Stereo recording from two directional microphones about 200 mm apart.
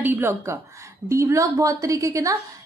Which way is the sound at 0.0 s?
10° right (ahead or behind).